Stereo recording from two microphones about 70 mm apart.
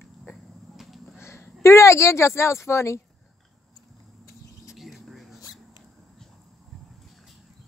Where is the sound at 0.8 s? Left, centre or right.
Centre.